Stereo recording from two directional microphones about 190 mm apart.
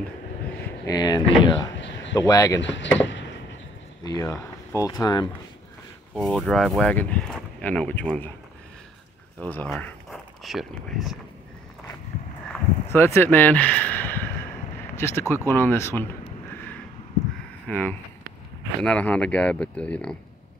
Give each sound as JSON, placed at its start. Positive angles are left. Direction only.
{"t": 0.8, "sound": "speech", "side_deg": 20}
{"t": 1.8, "sound": "a sound", "side_deg": 70}
{"t": 2.1, "sound": "speech", "side_deg": 20}
{"t": 2.6, "sound": "speech", "side_deg": 70}
{"t": 3.0, "sound": "a sound", "side_deg": 75}
{"t": 4.0, "sound": "speech", "side_deg": 20}
{"t": 6.1, "sound": "speech", "side_deg": 0}
{"t": 9.4, "sound": "speech", "side_deg": 10}
{"t": 12.9, "sound": "speech", "side_deg": 10}
{"t": 17.6, "sound": "speech", "side_deg": 10}